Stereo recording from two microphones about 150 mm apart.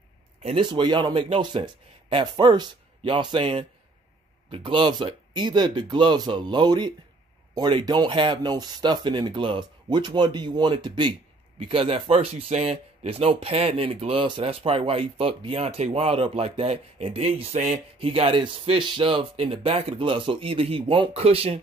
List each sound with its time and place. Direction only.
0.4 s speech: 40° right (ahead or behind)